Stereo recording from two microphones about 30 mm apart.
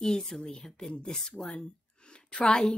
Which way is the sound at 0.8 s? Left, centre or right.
Centre.